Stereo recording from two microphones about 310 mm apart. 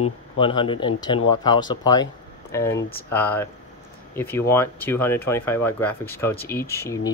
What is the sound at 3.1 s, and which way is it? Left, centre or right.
Speech, centre.